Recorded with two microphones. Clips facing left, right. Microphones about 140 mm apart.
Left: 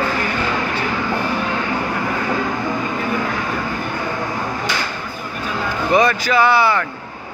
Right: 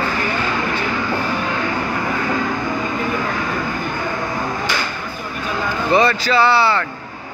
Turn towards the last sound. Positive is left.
turn(degrees=15)  # may be behind; listen again after turning